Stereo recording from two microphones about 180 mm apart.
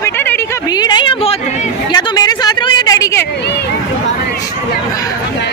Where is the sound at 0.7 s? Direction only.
25° left (ahead or behind).